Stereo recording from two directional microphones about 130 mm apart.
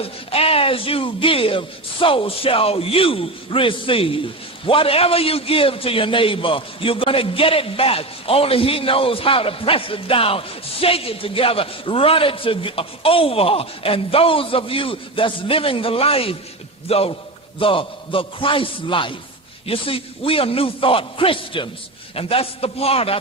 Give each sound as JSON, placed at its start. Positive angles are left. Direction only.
{"t": 0.0, "sound": "a man's voice", "side_deg": 50}